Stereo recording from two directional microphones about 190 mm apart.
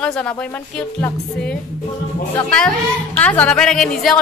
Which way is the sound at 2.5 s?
5° left (ahead or behind).